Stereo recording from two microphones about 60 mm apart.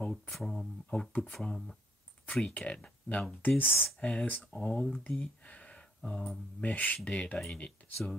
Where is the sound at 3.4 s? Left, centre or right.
Left.